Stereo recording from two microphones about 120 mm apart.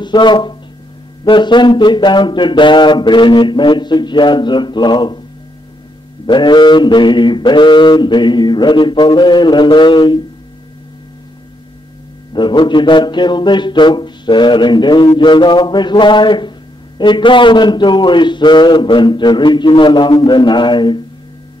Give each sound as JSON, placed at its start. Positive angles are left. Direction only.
{"t": 0.0, "sound": "speech", "side_deg": 40}
{"t": 1.2, "sound": "mantra", "side_deg": 40}
{"t": 6.2, "sound": "mantra", "side_deg": 40}
{"t": 12.3, "sound": "mantra", "side_deg": 40}